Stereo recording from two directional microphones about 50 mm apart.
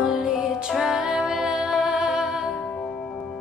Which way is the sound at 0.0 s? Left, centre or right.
Centre.